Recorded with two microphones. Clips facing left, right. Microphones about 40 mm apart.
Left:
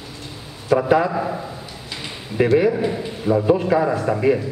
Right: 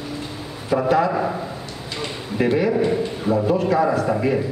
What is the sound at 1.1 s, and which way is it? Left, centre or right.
Speech, centre.